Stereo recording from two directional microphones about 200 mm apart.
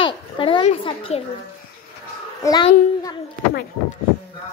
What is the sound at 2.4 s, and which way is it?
Speech, 20° left (ahead or behind).